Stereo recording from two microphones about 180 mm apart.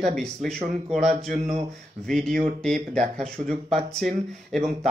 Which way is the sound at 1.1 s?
45° right (ahead or behind).